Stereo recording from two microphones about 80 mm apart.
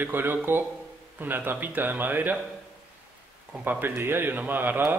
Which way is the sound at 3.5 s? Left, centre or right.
Right.